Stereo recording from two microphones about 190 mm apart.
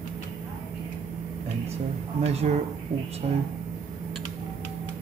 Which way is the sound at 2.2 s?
35° right (ahead or behind).